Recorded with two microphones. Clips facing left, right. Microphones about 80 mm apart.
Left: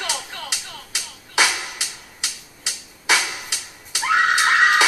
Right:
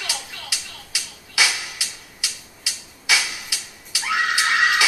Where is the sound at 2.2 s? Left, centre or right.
Left.